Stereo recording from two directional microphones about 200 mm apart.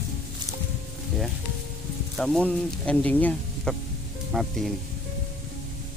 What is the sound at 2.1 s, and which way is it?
Speech, centre (ahead or behind).